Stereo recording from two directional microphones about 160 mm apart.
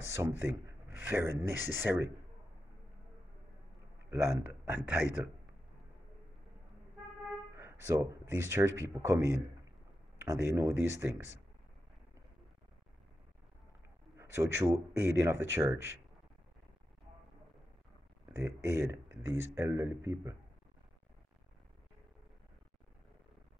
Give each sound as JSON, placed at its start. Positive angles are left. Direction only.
{"t": 0.1, "sound": "speech", "side_deg": -15}
{"t": 4.1, "sound": "speech", "side_deg": -15}
{"t": 7.5, "sound": "speech", "side_deg": -15}
{"t": 14.1, "sound": "speech", "side_deg": -15}
{"t": 18.3, "sound": "speech", "side_deg": -15}